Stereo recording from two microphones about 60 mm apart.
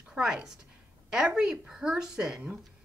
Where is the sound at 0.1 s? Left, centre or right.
Centre.